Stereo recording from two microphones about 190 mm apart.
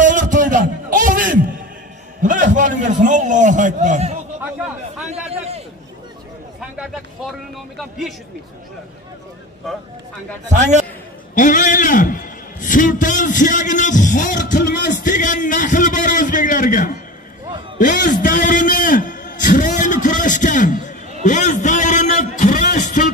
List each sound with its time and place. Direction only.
0.0 s a sound: 40° right (ahead or behind)
2.2 s a man's voice: 40° right (ahead or behind)
10.5 s a man's voice: 40° right (ahead or behind)
11.3 s a man's voice: 45° left (ahead or behind)
14.6 s speech: 60° left (ahead or behind)
15.0 s a man's voice: 40° left (ahead or behind)
18.2 s a sound: 45° left (ahead or behind)